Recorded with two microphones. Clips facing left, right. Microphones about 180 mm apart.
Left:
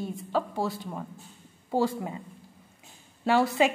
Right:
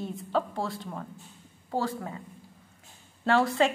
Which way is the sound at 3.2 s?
10° left (ahead or behind).